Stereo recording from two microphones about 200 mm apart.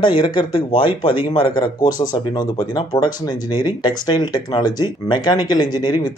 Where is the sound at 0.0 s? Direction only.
20° left (ahead or behind).